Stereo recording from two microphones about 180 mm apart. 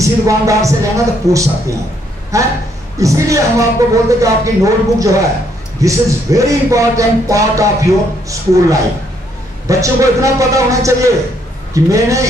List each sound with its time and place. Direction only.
0.0 s speech: 20° right (ahead or behind)